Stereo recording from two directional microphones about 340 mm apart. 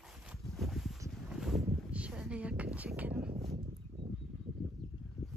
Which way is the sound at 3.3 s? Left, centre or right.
Centre.